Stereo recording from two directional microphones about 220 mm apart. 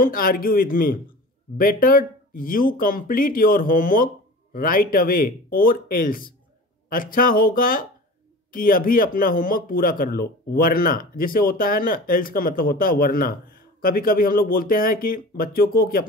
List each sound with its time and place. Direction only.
0.0 s speech: 40° left (ahead or behind)